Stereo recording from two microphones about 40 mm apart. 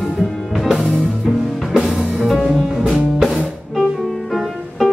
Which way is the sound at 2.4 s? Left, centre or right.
Centre.